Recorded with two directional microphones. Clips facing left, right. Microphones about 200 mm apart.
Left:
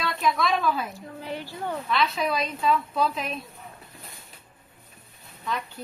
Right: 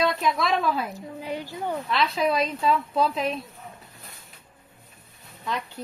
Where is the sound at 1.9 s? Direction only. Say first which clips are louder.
Right 2 dB; 30° right (ahead or behind).